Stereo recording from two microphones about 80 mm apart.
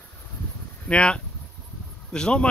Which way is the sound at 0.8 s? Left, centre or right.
Centre.